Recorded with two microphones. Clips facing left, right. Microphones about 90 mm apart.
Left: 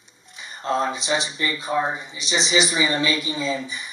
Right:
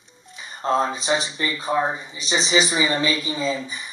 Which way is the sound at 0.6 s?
30° right (ahead or behind).